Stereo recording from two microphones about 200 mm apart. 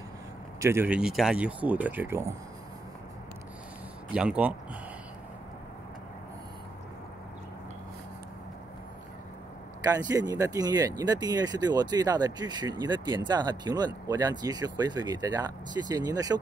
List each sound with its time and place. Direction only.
0.6 s speech: 10° right (ahead or behind)
4.1 s speech: 5° right (ahead or behind)
9.8 s speech: 15° right (ahead or behind)